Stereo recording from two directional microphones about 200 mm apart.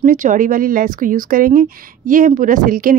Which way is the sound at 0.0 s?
40° right (ahead or behind).